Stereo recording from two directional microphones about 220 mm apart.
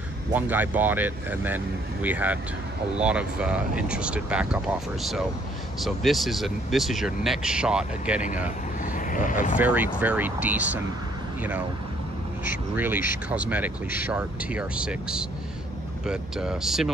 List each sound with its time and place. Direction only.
0.3 s speech: 10° right (ahead or behind)
5.8 s speech: centre (ahead or behind)
8.8 s vehicle: 35° left (ahead or behind)
9.6 s speech: 5° right (ahead or behind)
12.7 s speech: 10° right (ahead or behind)